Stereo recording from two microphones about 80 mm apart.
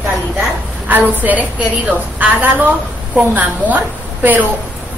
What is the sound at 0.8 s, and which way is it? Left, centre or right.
A woman's voice, right.